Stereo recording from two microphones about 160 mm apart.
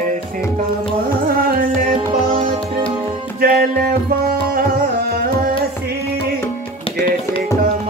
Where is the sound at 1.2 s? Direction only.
65° right (ahead or behind).